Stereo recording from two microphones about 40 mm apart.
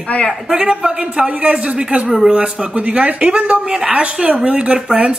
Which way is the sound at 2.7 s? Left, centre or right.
Right.